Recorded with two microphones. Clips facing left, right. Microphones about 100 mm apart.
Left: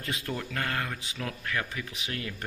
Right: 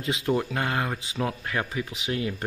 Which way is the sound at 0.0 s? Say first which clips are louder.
Right 9 dB; 20° right (ahead or behind).